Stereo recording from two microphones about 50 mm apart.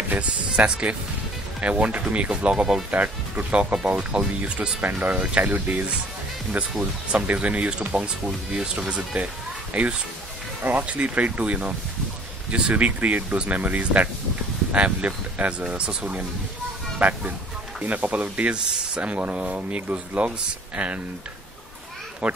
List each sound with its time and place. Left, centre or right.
0.1 s speech: right
2.9 s speech: right
15.6 s speech: centre
22.2 s speech: centre